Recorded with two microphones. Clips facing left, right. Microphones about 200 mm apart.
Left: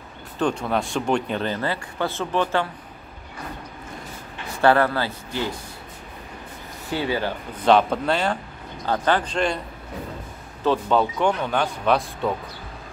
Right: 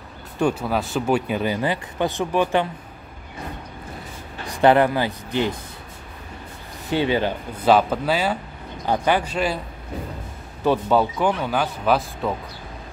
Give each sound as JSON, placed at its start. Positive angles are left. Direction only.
{"t": 0.4, "sound": "speech", "side_deg": -5}
{"t": 4.6, "sound": "speech", "side_deg": -20}
{"t": 6.9, "sound": "speech", "side_deg": -20}
{"t": 7.5, "sound": "speech", "side_deg": -5}
{"t": 10.6, "sound": "speech", "side_deg": -10}